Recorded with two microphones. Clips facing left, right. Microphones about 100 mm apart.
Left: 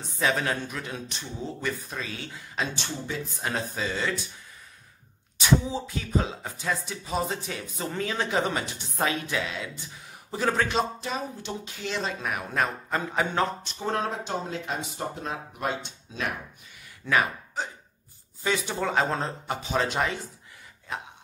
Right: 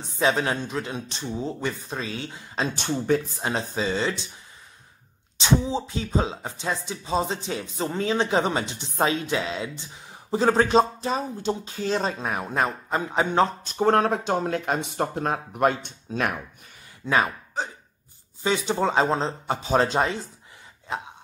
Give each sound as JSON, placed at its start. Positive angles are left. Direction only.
{"t": 0.0, "sound": "speech", "side_deg": -25}
{"t": 2.7, "sound": "speech", "side_deg": -55}
{"t": 3.3, "sound": "speech", "side_deg": -25}
{"t": 5.4, "sound": "speech", "side_deg": -30}
{"t": 13.7, "sound": "speech", "side_deg": -60}
{"t": 17.0, "sound": "speech", "side_deg": -25}